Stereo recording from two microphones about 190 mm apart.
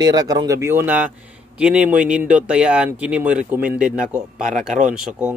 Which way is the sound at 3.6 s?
50° right (ahead or behind).